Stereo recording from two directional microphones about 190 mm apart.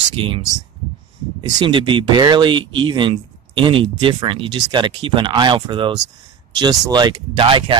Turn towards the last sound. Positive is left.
turn(degrees=-25)  # may be behind; listen again after turning